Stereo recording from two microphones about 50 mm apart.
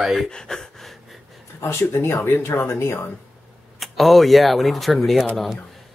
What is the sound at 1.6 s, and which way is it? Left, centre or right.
Speech, left.